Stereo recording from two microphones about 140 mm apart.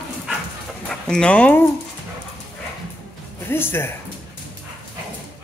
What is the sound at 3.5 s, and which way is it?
Speech, 15° left (ahead or behind).